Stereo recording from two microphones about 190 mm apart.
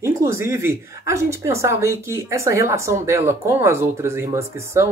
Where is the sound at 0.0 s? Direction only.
15° right (ahead or behind).